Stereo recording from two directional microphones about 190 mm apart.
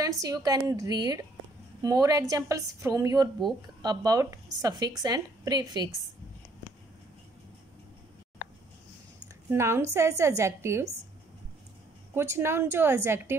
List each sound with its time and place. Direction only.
0.2 s a woman's voice: 20° right (ahead or behind)
9.5 s a woman's voice: 15° right (ahead or behind)
12.1 s a woman's voice: 10° right (ahead or behind)